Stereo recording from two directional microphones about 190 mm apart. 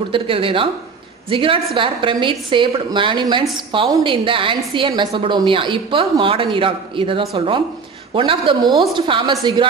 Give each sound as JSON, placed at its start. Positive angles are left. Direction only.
{"t": 0.1, "sound": "a woman's voice", "side_deg": -25}